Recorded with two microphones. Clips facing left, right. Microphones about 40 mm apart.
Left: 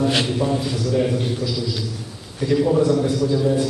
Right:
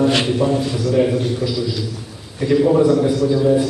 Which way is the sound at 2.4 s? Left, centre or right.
Centre.